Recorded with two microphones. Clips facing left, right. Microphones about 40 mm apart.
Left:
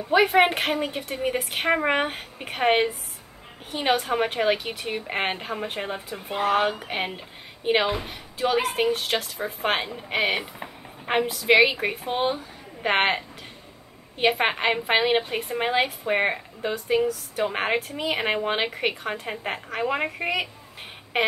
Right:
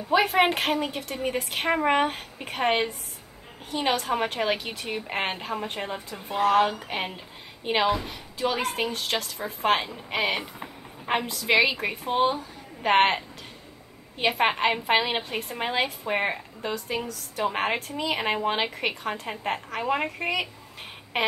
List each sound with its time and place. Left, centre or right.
0.1 s a woman's voice: centre
3.7 s a woman's voice: centre